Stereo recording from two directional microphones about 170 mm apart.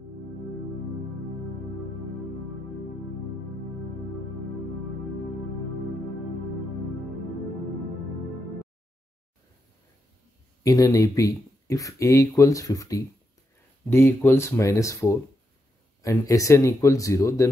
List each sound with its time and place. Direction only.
10.6 s speech: 20° left (ahead or behind)